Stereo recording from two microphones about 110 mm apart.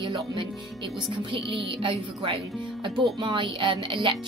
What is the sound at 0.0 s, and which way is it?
Speech, 45° right (ahead or behind).